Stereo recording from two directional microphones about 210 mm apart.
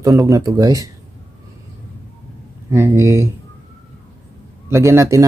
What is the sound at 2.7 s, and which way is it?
Speech, 10° right (ahead or behind).